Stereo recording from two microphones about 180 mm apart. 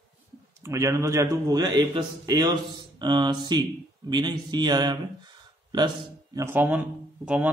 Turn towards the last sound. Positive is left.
turn(degrees=-10)  # may be behind; listen again after turning